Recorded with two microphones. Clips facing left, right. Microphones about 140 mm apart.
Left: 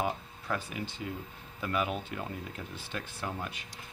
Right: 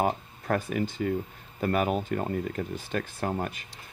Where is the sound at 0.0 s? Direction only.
50° right (ahead or behind).